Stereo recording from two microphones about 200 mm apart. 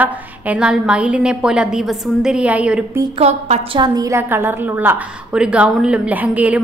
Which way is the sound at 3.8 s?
20° right (ahead or behind).